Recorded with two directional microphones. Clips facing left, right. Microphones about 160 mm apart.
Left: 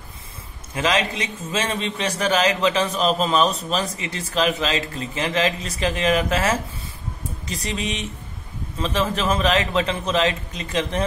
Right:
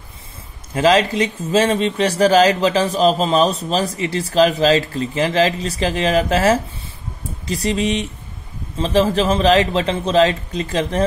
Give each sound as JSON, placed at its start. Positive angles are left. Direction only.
{"t": 0.7, "sound": "speech", "side_deg": -35}